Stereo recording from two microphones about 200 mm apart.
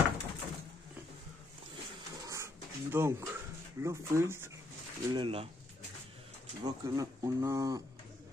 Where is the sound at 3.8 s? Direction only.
15° right (ahead or behind).